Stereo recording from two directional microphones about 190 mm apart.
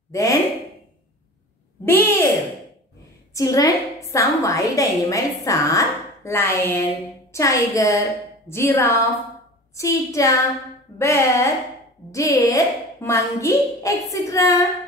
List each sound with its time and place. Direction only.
0.1 s speech: 20° left (ahead or behind)
1.9 s a child's voice: 10° left (ahead or behind)
3.3 s a woman's voice: 20° left (ahead or behind)